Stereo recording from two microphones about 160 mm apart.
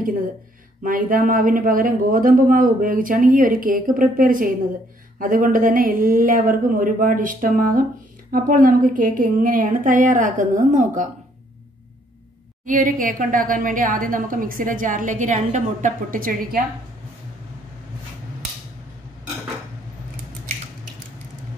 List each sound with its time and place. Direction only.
0.8 s a woman's voice: 60° right (ahead or behind)
12.6 s a woman's voice: 55° right (ahead or behind)